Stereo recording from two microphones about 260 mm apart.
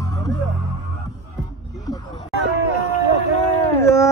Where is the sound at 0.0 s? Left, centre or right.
Centre.